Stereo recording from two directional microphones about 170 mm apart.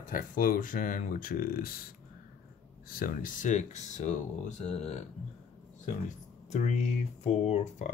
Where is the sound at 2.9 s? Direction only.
55° left (ahead or behind); by 5.0 s 35° left (ahead or behind).